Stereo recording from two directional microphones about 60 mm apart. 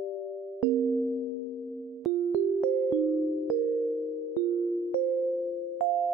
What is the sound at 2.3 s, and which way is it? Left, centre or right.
Music, centre.